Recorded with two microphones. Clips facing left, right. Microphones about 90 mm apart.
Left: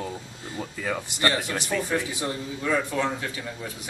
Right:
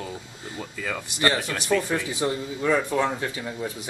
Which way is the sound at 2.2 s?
20° right (ahead or behind).